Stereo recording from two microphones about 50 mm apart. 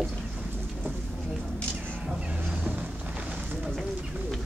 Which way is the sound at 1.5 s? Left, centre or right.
Left.